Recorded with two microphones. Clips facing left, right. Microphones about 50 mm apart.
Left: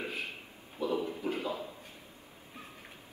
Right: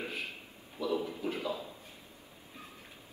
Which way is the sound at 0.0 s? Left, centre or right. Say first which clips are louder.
Left 1 dB; left.